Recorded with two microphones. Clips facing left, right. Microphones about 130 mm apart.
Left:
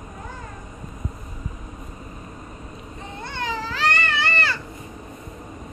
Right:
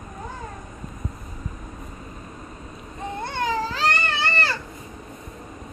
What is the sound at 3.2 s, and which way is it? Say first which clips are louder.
Baby cry: right 3 dB; 50° right (ahead or behind).